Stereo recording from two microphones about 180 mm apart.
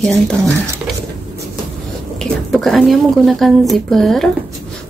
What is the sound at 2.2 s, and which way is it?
Speech, centre (ahead or behind).